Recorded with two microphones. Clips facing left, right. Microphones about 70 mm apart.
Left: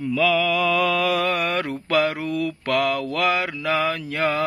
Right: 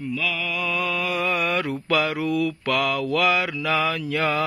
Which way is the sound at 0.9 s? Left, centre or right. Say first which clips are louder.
Left 3 dB; left.